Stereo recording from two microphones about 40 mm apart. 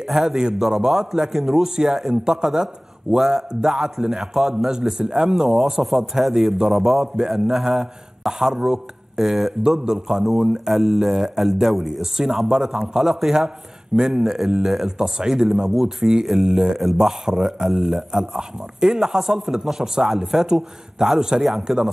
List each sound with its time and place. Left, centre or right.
0.1 s speech: centre
14.2 s speech: centre
16.8 s a man's voice: centre